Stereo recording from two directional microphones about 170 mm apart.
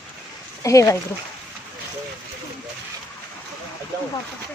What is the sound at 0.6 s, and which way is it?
Speech, 20° left (ahead or behind).